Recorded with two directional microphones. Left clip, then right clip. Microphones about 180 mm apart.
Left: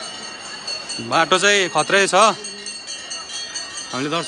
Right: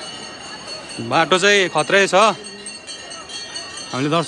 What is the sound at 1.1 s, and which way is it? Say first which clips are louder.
Speech: right 1 dB; 15° left (ahead or behind).